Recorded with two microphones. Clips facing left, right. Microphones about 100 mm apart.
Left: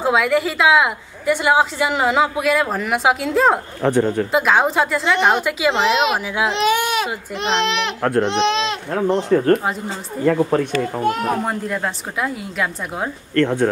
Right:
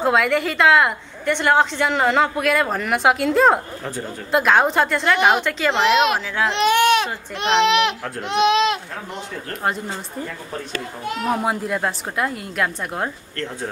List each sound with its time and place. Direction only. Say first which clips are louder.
0.0 s a woman's voice: left 1 dB; centre (ahead or behind)
3.8 s speech: left 12 dB; 70° left (ahead or behind)
4.3 s a woman's voice: even; centre (ahead or behind)
9.3 s speech: left 17 dB; 55° left (ahead or behind)
10.2 s speech: left 14 dB; 75° left (ahead or behind)
11.3 s a woman's voice: even; 5° right (ahead or behind)
13.4 s speech: left 12 dB; 65° left (ahead or behind)